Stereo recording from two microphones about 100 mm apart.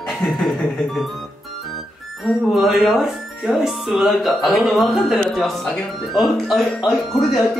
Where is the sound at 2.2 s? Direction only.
5° right (ahead or behind).